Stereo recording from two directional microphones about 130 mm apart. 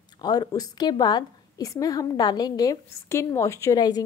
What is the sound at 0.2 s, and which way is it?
A woman's voice, 30° left (ahead or behind).